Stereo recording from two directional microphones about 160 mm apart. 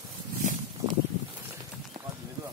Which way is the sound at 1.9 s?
55° right (ahead or behind).